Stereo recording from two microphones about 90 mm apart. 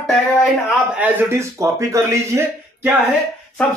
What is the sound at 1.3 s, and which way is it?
Speech, 35° right (ahead or behind).